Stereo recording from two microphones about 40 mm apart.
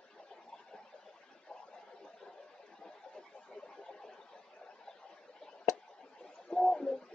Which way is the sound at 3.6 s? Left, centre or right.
Centre.